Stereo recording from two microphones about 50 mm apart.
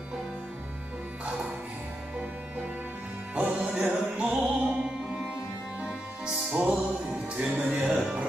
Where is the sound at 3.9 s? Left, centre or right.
Right.